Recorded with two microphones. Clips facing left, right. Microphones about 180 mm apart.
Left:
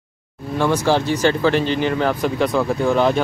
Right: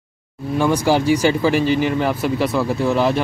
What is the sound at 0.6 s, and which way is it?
Speech, 10° right (ahead or behind).